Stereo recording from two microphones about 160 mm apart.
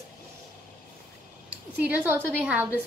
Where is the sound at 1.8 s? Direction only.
10° right (ahead or behind).